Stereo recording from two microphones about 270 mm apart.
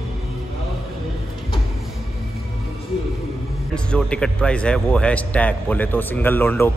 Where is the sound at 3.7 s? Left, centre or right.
Centre.